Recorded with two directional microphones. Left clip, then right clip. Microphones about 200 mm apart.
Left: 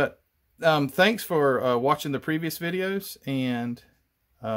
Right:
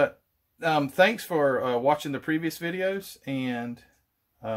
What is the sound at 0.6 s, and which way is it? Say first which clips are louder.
Speech: left 1 dB; 45° left (ahead or behind).